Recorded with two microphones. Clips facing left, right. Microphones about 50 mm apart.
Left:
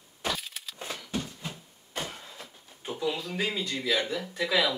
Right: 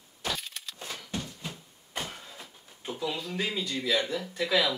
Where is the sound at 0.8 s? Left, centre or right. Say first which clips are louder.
Left 3 dB; centre.